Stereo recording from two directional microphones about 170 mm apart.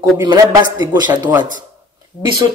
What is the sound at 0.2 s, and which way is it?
Speech, 25° right (ahead or behind).